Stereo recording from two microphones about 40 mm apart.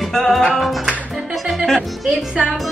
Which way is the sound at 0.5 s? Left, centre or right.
Centre.